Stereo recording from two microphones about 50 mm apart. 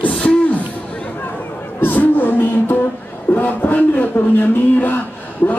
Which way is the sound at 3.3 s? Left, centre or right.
Left.